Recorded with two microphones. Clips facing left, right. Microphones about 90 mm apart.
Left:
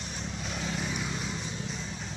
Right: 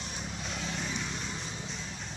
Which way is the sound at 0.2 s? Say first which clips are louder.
Left 3 dB; centre (ahead or behind).